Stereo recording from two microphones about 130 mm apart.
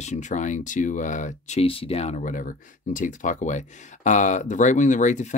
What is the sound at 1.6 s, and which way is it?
Speech, 45° left (ahead or behind).